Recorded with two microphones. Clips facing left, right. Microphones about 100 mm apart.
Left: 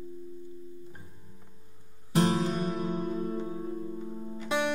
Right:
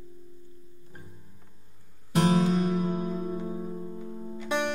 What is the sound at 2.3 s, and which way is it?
Music, centre (ahead or behind).